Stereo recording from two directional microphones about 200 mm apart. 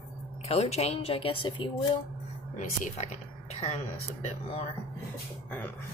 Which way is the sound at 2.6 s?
35° left (ahead or behind).